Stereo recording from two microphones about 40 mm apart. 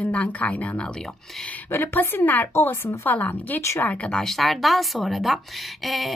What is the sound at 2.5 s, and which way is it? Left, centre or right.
Speech, left.